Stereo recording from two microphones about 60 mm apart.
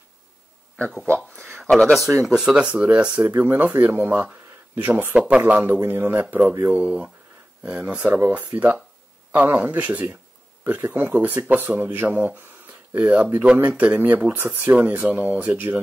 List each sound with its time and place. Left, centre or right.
1.5 s speech: centre
2.2 s speech: centre
3.3 s speech: right
5.1 s speech: centre
5.5 s speech: right
6.7 s speech: right
8.1 s speech: right